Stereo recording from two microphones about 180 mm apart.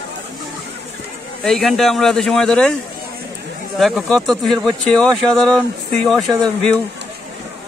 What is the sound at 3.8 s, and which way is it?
Speech, centre (ahead or behind).